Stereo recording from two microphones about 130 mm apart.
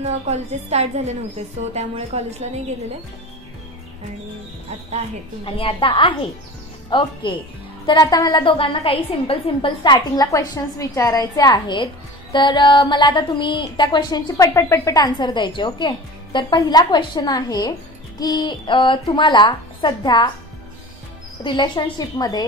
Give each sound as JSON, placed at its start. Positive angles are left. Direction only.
{"t": 0.0, "sound": "a woman's voice", "side_deg": -55}
{"t": 5.4, "sound": "a woman's voice", "side_deg": 40}
{"t": 9.9, "sound": "a woman's voice", "side_deg": 25}
{"t": 21.4, "sound": "a woman's voice", "side_deg": 35}